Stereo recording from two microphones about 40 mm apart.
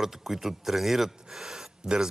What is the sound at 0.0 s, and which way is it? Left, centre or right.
Speech, centre.